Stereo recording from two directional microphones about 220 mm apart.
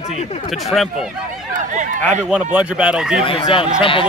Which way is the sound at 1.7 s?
35° right (ahead or behind).